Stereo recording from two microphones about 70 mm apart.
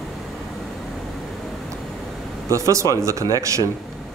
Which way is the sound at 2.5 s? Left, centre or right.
Right.